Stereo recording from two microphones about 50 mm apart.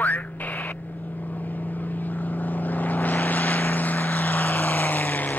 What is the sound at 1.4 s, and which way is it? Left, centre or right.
Vehicle, left.